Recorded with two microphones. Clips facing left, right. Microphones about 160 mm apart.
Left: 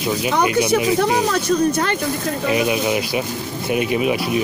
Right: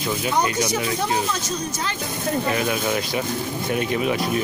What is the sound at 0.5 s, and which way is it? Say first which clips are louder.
Speech: left 7 dB; 60° left (ahead or behind).